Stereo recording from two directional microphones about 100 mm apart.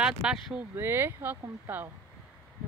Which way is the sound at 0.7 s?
20° right (ahead or behind).